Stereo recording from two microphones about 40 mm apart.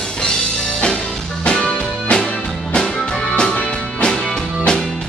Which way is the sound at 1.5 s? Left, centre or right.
Centre.